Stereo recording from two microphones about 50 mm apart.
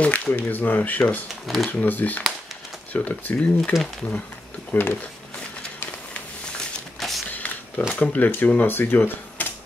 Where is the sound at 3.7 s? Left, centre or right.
Centre.